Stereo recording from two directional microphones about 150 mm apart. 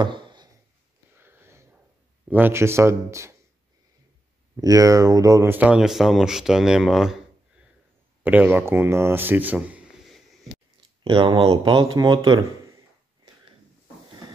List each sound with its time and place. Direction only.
0.0 s a sound: 30° right (ahead or behind)
1.1 s a sound: 15° right (ahead or behind)
2.2 s speech: 10° right (ahead or behind)
4.6 s speech: 25° right (ahead or behind); by 7.2 s centre (ahead or behind)
8.2 s speech: 10° right (ahead or behind)
11.1 s speech: 35° right (ahead or behind)